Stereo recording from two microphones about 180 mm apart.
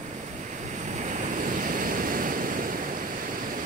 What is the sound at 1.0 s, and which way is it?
Waves, 45° right (ahead or behind).